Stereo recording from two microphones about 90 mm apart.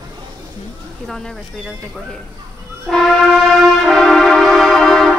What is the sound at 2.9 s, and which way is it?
Brass instrument, centre (ahead or behind).